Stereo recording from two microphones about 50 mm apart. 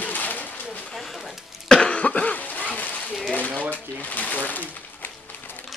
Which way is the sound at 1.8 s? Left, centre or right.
Left.